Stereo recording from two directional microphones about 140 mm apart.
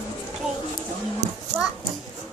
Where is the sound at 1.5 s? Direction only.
10° right (ahead or behind).